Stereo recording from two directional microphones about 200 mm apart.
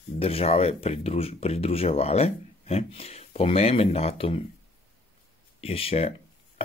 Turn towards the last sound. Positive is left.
turn(degrees=30)  # may be behind; listen again after turning